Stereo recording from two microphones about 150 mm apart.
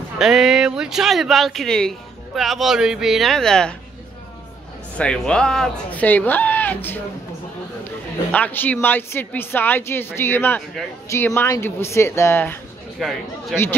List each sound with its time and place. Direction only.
0.2 s speech: 5° right (ahead or behind)
4.9 s a woman's voice: 5° left (ahead or behind)
8.3 s a woman's voice: 10° left (ahead or behind)
13.0 s speech: centre (ahead or behind)